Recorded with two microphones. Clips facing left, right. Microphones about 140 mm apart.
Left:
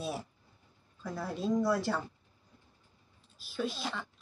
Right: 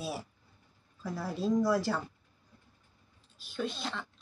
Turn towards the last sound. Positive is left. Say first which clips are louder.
# even
turn(degrees=0)  # may be behind; listen again after turning